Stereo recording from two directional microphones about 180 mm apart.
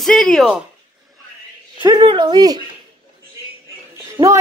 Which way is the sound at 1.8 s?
25° right (ahead or behind).